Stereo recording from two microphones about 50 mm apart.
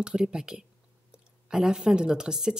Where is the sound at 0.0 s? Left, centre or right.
Centre.